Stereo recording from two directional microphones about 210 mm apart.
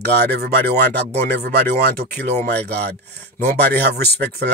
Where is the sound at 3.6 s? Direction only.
50° right (ahead or behind).